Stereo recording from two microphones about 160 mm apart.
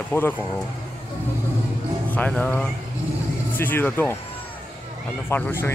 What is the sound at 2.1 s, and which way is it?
Speech, 10° left (ahead or behind).